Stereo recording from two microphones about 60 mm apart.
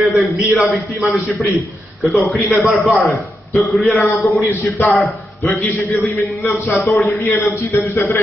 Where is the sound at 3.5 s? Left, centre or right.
Centre.